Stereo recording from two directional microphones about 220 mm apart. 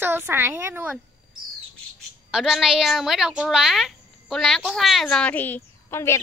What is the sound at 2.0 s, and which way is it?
A woman's voice, centre (ahead or behind).